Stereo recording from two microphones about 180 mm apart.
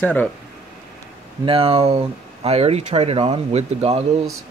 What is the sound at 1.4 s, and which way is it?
Speech, 30° right (ahead or behind).